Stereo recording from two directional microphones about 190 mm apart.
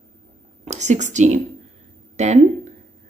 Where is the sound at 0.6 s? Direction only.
35° right (ahead or behind).